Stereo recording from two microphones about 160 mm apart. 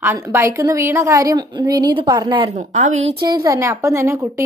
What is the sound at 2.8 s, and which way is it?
Speech, 45° right (ahead or behind).